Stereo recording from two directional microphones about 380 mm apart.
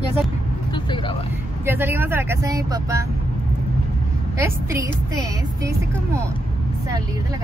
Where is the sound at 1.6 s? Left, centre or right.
Centre.